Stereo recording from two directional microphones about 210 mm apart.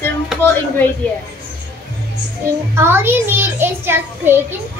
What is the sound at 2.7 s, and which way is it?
A child's voice, 10° right (ahead or behind).